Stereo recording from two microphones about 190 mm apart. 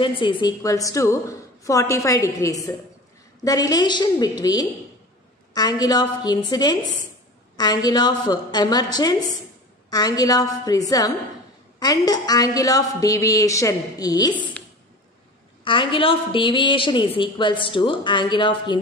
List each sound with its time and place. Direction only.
0.0 s a woman's voice: 25° left (ahead or behind)
15.6 s a woman's voice: 25° left (ahead or behind)